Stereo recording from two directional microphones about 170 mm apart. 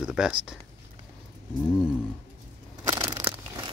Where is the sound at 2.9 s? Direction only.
20° right (ahead or behind).